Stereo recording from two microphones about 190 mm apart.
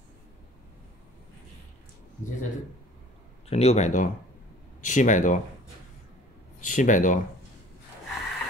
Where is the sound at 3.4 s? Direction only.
35° left (ahead or behind).